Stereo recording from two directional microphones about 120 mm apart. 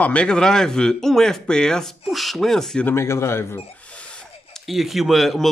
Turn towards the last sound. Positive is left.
turn(degrees=0)  # may be behind; listen again after turning